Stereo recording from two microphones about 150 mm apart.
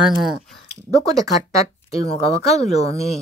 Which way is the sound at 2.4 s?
45° left (ahead or behind).